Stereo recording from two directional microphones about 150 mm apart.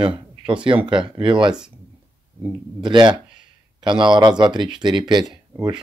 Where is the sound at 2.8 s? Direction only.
30° right (ahead or behind).